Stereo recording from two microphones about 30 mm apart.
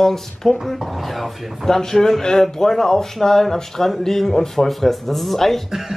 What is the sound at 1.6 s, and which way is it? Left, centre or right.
Speech, centre.